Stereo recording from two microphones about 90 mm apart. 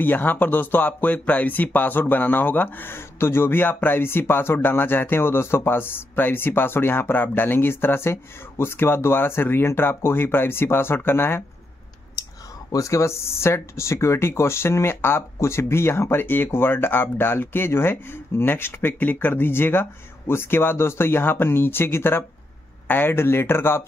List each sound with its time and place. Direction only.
0.0 s speech: 20° left (ahead or behind)
12.7 s speech: 35° left (ahead or behind)